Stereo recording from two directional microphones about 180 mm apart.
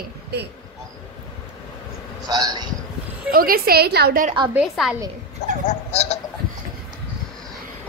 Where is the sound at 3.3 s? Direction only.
55° right (ahead or behind).